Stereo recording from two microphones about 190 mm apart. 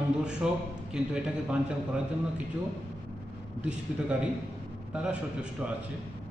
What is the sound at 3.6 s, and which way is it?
A man's voice, 5° right (ahead or behind).